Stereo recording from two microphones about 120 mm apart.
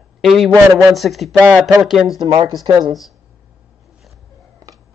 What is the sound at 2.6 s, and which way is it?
Speech, 35° right (ahead or behind).